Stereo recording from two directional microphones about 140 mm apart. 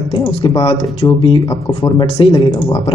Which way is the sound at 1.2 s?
40° left (ahead or behind).